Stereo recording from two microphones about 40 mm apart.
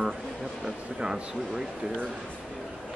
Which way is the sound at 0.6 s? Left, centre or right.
Centre.